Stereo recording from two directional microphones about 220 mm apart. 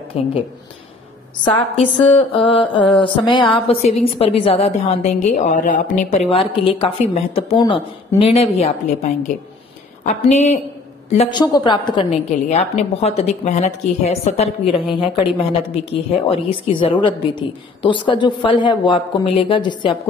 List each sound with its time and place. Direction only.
0.1 s a woman's voice: 25° left (ahead or behind)
1.4 s a woman's voice: 25° left (ahead or behind)
15.7 s a woman's voice: 25° left (ahead or behind)